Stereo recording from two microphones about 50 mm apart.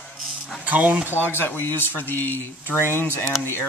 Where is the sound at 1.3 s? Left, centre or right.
Left.